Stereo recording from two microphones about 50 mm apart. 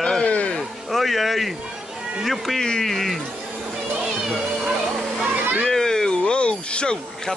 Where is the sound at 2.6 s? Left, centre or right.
Centre.